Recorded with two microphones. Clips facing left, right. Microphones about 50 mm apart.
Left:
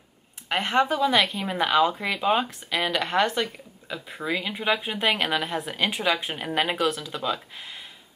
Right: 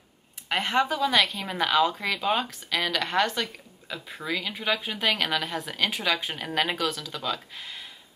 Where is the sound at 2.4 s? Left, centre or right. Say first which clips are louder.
Left 2 dB; left.